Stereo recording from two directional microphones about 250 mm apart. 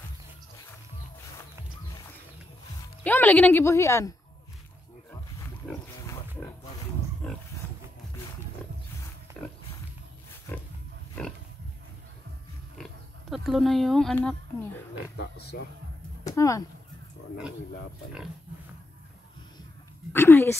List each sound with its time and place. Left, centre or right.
3.0 s speech: centre
7.2 s pig: centre
12.7 s oink: centre
15.1 s speech: left
16.3 s speech: centre
20.1 s speech: centre